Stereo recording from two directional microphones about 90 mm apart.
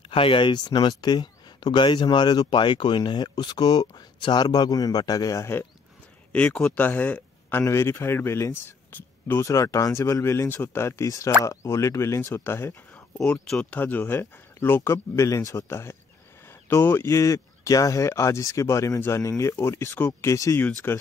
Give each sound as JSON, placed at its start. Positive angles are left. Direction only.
{"t": 0.1, "sound": "speech", "side_deg": 80}
{"t": 5.4, "sound": "speech", "side_deg": 25}
{"t": 6.3, "sound": "speech", "side_deg": 10}
{"t": 7.6, "sound": "speech", "side_deg": 30}
{"t": 9.5, "sound": "speech", "side_deg": 35}
{"t": 12.9, "sound": "speech", "side_deg": 10}